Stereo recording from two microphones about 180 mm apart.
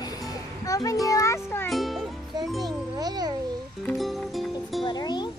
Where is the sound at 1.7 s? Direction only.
Centre (ahead or behind).